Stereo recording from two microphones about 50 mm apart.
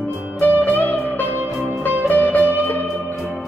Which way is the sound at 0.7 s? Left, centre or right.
Left.